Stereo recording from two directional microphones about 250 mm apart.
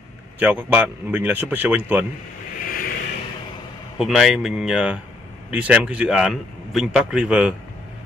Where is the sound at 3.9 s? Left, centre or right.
Centre.